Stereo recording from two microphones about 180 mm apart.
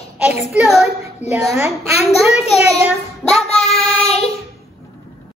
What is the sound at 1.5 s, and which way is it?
Child singing, 15° right (ahead or behind).